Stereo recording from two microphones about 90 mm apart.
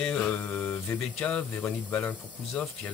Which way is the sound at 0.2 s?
15° left (ahead or behind).